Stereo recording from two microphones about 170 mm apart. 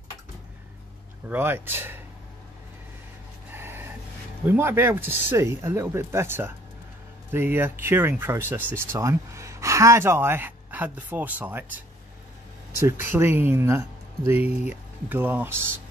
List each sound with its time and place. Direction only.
1.3 s speech: 10° right (ahead or behind)
3.5 s a sound: 15° right (ahead or behind)
4.5 s speech: 15° right (ahead or behind)
12.8 s speech: 15° right (ahead or behind)